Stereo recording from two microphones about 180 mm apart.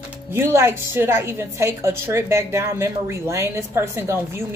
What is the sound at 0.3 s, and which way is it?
A woman's voice, 15° right (ahead or behind).